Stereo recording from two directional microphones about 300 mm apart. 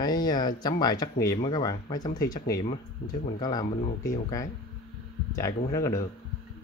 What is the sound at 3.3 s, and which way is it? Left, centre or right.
Speech, centre.